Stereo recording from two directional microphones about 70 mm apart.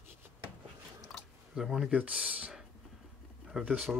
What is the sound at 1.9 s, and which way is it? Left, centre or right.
Speech, centre.